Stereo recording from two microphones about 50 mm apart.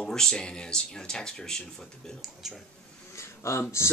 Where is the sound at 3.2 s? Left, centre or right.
Left.